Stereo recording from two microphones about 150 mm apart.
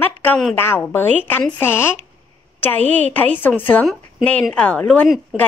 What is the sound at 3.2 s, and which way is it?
A woman's voice, 10° left (ahead or behind).